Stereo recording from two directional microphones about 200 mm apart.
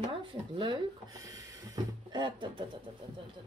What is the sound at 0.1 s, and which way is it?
Speech, 25° right (ahead or behind).